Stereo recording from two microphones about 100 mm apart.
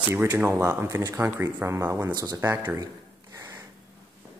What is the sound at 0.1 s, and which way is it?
Speech, 20° right (ahead or behind).